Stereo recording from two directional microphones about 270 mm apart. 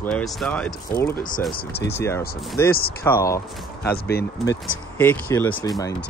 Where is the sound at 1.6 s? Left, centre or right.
Left.